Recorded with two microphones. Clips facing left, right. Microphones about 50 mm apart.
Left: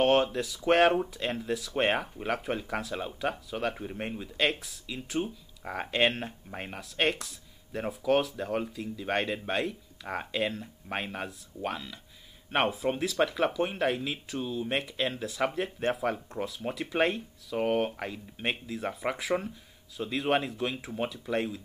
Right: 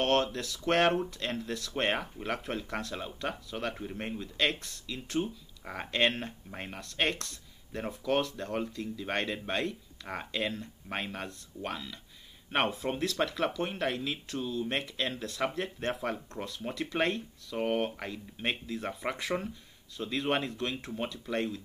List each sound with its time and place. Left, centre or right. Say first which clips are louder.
0.0 s speech: left 4 dB; centre